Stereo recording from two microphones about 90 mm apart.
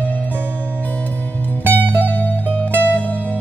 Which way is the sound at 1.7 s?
20° left (ahead or behind).